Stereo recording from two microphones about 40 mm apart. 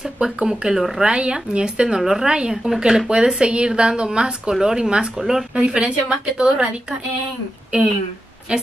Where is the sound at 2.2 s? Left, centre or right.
Right.